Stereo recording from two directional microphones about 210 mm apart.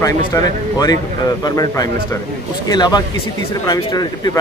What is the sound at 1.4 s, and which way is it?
Speech, 15° left (ahead or behind).